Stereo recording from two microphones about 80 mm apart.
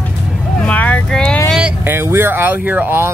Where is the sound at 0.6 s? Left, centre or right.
Centre.